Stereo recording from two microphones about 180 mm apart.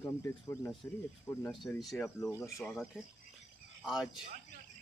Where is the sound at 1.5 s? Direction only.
Centre (ahead or behind).